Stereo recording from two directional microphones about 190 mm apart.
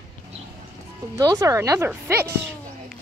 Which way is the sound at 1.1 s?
20° right (ahead or behind).